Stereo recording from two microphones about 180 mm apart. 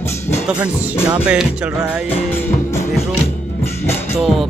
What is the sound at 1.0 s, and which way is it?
Speech, 5° right (ahead or behind).